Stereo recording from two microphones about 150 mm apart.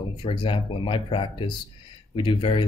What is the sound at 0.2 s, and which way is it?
Speech, 35° left (ahead or behind).